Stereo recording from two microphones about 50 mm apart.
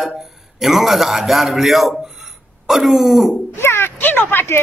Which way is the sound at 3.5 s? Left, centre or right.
Left.